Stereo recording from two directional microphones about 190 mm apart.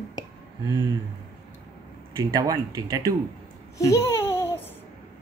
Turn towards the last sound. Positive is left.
turn(degrees=10)  # may be behind; listen again after turning